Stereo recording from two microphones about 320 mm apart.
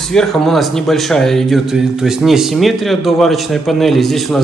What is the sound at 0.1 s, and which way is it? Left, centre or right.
Speech, centre.